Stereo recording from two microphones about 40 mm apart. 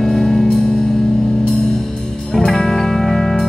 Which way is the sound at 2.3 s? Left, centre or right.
Centre.